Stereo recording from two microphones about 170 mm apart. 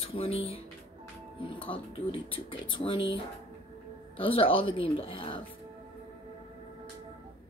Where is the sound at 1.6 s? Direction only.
30° left (ahead or behind).